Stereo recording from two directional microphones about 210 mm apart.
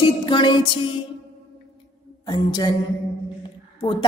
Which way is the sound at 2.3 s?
20° left (ahead or behind).